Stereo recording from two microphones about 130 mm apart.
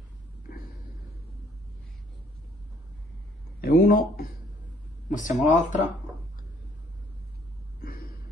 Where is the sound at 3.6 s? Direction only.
90° left.